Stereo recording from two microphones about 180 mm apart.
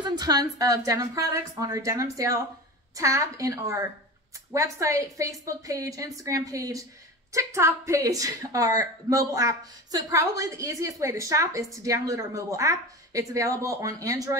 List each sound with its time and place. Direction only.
0.0 s a woman's voice: 20° right (ahead or behind)